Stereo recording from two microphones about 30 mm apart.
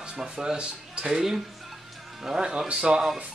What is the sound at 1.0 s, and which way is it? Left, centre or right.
A man's voice, centre.